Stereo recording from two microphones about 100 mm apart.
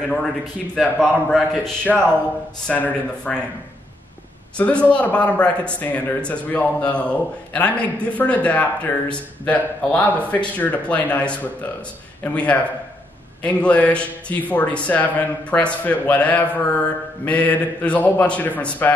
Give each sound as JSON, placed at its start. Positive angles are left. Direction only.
{"t": 0.7, "sound": "a man's voice", "side_deg": 5}
{"t": 2.6, "sound": "a man's voice", "side_deg": 15}
{"t": 4.6, "sound": "a man's voice", "side_deg": 15}